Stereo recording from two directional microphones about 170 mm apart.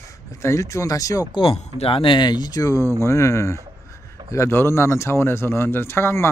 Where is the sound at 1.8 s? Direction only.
30° left (ahead or behind).